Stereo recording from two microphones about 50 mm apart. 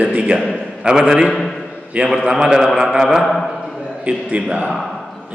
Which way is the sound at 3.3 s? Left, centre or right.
Centre.